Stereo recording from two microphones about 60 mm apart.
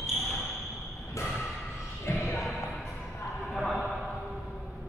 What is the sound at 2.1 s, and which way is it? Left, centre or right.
Basketball bounce, left.